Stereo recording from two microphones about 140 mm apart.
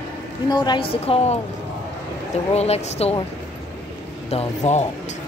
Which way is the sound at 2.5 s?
50° left (ahead or behind).